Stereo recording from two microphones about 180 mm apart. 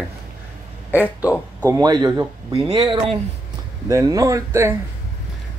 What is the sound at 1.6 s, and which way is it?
Speech, 20° right (ahead or behind).